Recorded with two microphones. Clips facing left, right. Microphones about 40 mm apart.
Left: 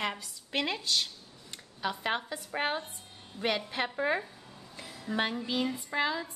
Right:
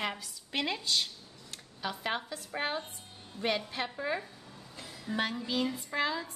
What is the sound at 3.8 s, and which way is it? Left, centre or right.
A woman's voice, left.